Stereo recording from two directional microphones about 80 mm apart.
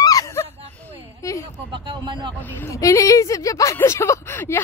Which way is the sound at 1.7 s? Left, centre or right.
Right.